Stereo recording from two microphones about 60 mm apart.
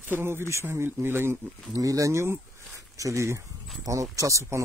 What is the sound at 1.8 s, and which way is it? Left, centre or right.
Speech, right.